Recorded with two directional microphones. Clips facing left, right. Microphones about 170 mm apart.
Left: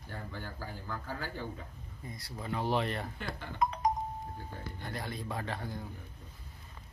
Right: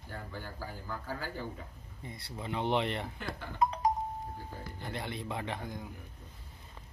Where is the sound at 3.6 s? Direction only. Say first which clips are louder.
Right 1 dB; 30° right (ahead or behind).